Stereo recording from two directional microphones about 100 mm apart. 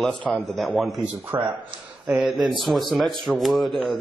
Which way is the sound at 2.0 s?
5° right (ahead or behind).